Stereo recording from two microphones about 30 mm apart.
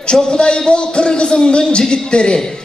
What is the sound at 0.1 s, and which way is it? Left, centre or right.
A man's voice, left.